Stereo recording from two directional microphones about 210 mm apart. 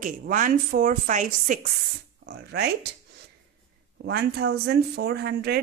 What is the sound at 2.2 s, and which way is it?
Speech, 50° right (ahead or behind).